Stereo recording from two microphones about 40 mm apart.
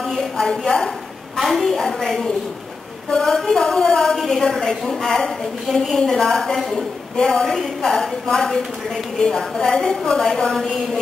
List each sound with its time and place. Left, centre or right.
0.0 s a sound: centre
1.4 s a woman's voice: centre
3.3 s a woman's voice: centre